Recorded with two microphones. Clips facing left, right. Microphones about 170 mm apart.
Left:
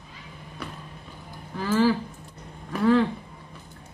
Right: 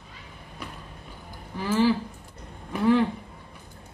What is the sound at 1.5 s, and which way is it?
Speech, 10° right (ahead or behind).